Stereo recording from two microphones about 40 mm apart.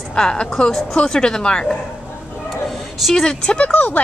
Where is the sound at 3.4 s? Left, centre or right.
Left.